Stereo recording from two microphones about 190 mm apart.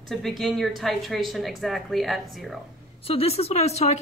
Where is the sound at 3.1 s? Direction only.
30° left (ahead or behind).